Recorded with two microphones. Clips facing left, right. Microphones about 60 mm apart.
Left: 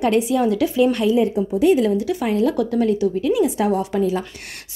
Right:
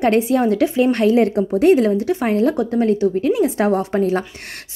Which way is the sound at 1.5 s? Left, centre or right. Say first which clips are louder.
Right 2 dB; right.